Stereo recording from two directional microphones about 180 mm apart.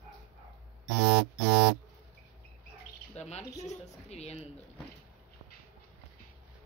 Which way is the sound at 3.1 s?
35° left (ahead or behind).